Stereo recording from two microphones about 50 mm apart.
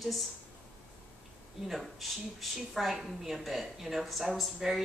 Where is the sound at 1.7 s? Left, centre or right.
Centre.